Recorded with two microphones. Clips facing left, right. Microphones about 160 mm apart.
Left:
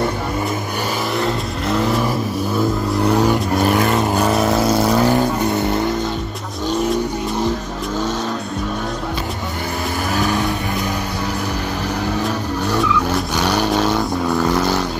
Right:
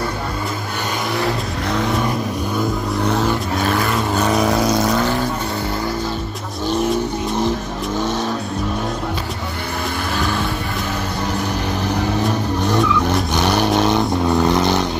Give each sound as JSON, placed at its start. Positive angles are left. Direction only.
{"t": 1.1, "sound": "vehicle", "side_deg": 0}
{"t": 12.6, "sound": "vehicle", "side_deg": 10}
{"t": 13.6, "sound": "a sound", "side_deg": -15}